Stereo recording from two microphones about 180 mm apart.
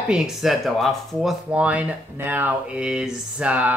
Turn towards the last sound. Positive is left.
turn(degrees=-5)  # may be behind; listen again after turning